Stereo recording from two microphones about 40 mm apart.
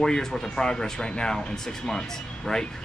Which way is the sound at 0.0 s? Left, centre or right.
Centre.